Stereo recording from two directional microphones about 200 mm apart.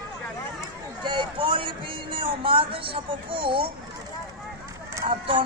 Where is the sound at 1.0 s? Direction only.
25° right (ahead or behind).